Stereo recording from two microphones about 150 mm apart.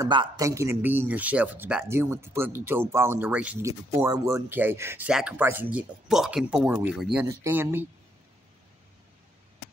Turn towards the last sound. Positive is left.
turn(degrees=-15)  # may be behind; listen again after turning